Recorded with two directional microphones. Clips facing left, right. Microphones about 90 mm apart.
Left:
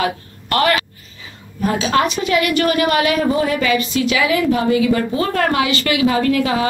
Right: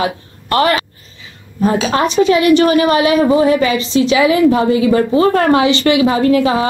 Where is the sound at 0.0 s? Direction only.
25° right (ahead or behind).